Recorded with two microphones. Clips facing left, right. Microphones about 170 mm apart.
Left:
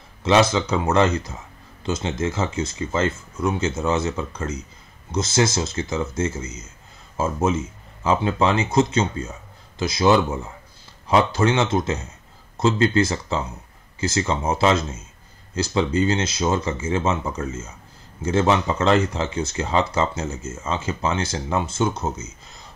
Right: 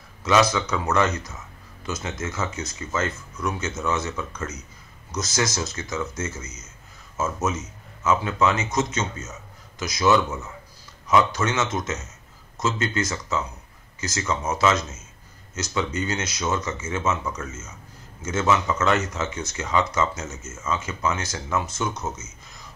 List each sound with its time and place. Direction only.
0.2 s speech: 30° left (ahead or behind)